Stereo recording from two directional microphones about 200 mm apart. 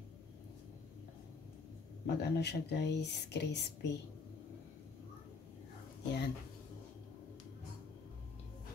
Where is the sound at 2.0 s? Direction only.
55° left (ahead or behind).